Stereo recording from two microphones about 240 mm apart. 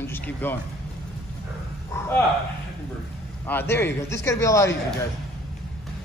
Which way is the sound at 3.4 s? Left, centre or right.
Centre.